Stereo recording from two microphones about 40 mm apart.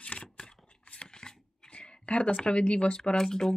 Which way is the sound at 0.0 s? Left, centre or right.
Left.